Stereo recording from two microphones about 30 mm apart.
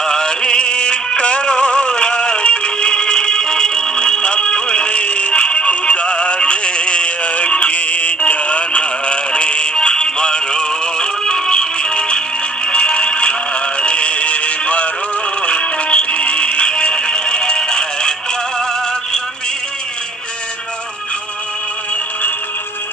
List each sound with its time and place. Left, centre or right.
0.0 s music: centre; by 5.7 s left
5.7 s synthetic singing: left
9.8 s music: left
12.6 s synthetic singing: left
15.4 s music: left